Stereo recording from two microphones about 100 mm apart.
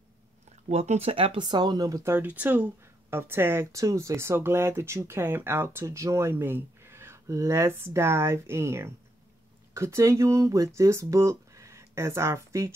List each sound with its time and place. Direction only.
0.7 s speech: 90° right; by 2.1 s 35° right (ahead or behind)
2.1 s speech: 15° right (ahead or behind)